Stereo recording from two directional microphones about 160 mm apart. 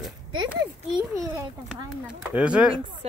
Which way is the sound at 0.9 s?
25° right (ahead or behind).